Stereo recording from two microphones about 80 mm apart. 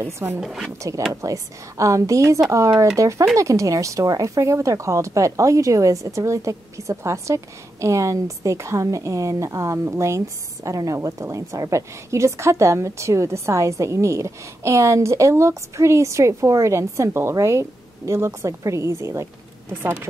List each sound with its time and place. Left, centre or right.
0.0 s speech: right
0.4 s speech: centre
1.2 s speech: right
19.7 s speech: right